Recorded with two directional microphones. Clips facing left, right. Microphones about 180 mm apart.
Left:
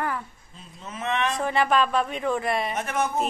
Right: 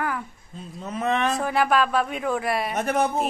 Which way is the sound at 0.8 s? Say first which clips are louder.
Right 3 dB; 40° right (ahead or behind).